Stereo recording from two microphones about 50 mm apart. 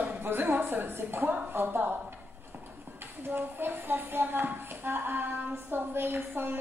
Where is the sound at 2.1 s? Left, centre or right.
Right.